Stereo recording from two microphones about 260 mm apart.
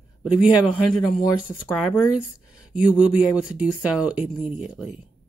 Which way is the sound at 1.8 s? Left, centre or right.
Centre.